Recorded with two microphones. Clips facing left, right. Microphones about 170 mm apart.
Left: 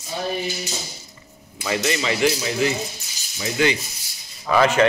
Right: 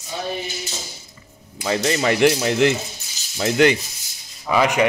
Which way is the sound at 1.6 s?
35° right (ahead or behind).